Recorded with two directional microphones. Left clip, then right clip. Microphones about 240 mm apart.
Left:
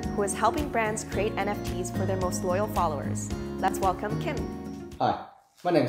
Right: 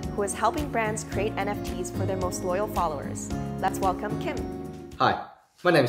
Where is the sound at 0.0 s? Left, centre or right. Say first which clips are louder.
Even; centre.